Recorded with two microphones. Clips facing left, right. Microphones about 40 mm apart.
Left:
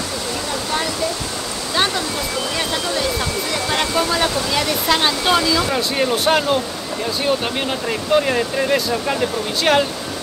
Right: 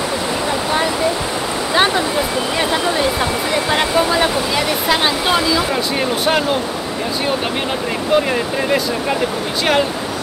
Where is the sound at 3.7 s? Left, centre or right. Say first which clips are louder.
Right 3 dB; centre.